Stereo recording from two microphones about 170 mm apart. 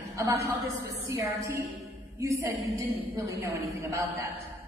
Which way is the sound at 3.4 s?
15° right (ahead or behind).